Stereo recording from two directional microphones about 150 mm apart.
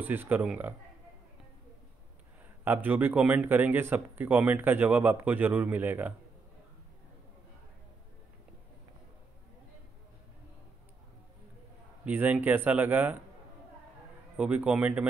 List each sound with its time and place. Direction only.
0.0 s speech: 15° right (ahead or behind)
2.6 s speech: 15° right (ahead or behind)
12.0 s speech: 10° right (ahead or behind)
14.3 s speech: 10° right (ahead or behind)